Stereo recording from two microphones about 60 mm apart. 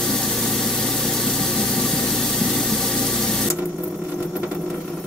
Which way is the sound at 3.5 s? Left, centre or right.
Centre.